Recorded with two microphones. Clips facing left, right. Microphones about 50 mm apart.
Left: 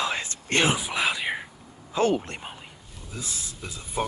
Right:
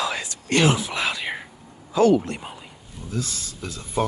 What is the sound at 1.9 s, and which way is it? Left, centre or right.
Speech, left.